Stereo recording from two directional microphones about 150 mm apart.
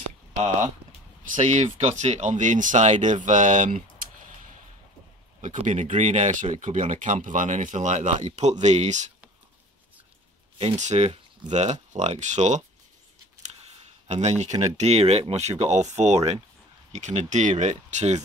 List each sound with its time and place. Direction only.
1.3 s speech: 50° right (ahead or behind)
5.4 s speech: 55° right (ahead or behind)
10.6 s speech: 50° right (ahead or behind)
14.0 s speech: 50° right (ahead or behind)